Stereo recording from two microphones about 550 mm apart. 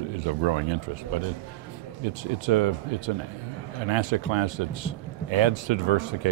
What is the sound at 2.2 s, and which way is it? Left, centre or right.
A man's voice, right.